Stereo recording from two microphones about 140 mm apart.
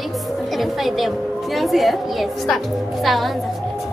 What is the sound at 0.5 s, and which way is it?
A woman's voice, centre (ahead or behind).